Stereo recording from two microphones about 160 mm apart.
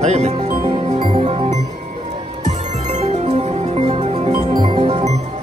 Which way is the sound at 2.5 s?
45° right (ahead or behind).